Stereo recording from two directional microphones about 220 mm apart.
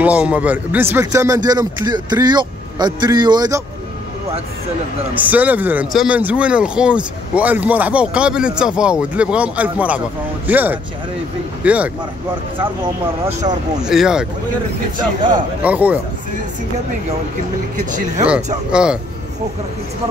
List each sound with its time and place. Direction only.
0.0 s a man's voice: 5° right (ahead or behind)
5.1 s a man's voice: 5° right (ahead or behind)
13.3 s speech: 30° right (ahead or behind)
13.8 s speech: 5° right (ahead or behind)
15.6 s a man's voice: 5° right (ahead or behind)
18.7 s speech: 5° right (ahead or behind)